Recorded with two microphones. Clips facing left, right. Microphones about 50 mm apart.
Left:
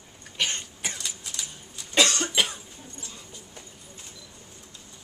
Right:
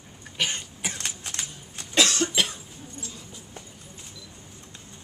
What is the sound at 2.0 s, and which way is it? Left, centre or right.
Cough, centre.